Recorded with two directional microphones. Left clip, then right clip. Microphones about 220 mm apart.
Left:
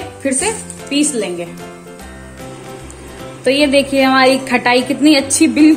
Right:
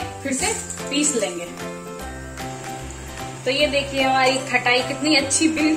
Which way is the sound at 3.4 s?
45° left (ahead or behind).